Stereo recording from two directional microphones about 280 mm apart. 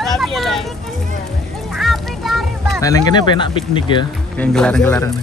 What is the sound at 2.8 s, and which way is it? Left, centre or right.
Speech, centre.